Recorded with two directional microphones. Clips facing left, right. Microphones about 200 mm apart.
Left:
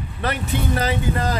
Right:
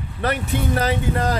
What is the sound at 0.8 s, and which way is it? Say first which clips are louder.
Speech: right 1 dB; 65° right (ahead or behind).